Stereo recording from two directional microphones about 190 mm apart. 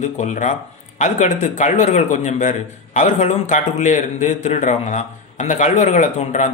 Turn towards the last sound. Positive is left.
turn(degrees=40)  # may be behind; listen again after turning